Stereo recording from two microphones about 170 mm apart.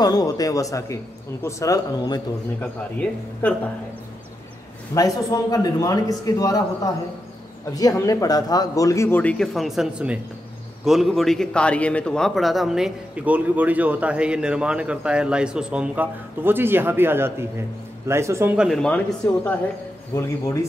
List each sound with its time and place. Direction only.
0.0 s a man's voice: 20° left (ahead or behind)
2.6 s a man's voice: 10° left (ahead or behind)
4.9 s a man's voice: 20° left (ahead or behind); by 18.5 s 15° right (ahead or behind)
18.6 s a man's voice: centre (ahead or behind)